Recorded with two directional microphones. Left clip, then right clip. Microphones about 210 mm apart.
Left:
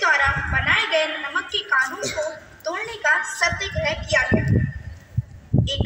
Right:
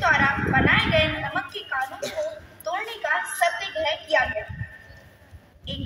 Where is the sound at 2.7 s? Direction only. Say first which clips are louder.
Left 5 dB; 45° left (ahead or behind).